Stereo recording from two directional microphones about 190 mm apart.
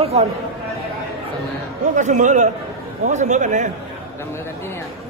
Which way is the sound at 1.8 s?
40° right (ahead or behind).